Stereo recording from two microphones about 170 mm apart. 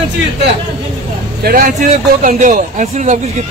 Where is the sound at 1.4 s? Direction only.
65° right (ahead or behind).